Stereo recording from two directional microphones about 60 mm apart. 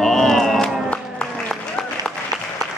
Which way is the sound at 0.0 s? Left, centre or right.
Centre.